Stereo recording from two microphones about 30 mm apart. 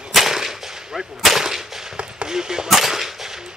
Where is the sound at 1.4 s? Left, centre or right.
Centre.